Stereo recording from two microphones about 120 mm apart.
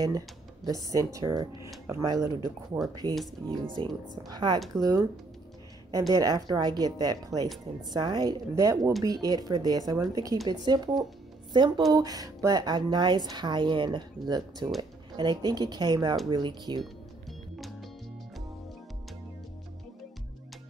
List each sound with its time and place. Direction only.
0.7 s speech: 30° right (ahead or behind)